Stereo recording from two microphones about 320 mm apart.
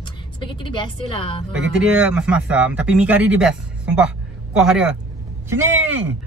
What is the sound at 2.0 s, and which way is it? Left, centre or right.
A man's voice, centre.